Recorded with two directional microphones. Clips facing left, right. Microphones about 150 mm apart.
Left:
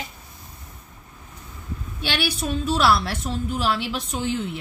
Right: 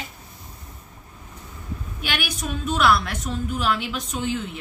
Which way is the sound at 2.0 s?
30° left (ahead or behind).